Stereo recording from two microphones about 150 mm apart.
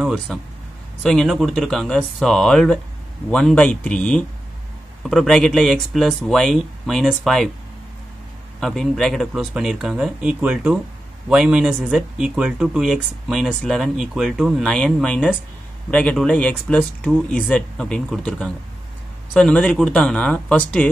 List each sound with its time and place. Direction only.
0.0 s speech: centre (ahead or behind)
8.5 s speech: centre (ahead or behind)